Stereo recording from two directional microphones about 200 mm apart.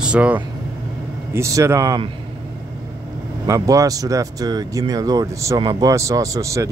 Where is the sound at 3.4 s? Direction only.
15° right (ahead or behind).